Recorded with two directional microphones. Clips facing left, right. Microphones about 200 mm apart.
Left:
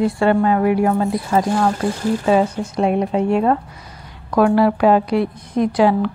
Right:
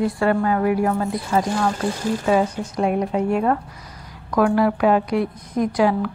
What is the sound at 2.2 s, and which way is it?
A woman's voice, 25° left (ahead or behind).